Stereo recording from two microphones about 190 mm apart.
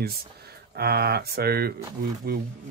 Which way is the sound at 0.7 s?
55° right (ahead or behind).